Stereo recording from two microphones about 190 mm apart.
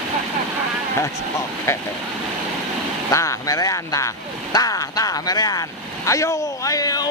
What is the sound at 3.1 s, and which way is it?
Speech, 15° left (ahead or behind).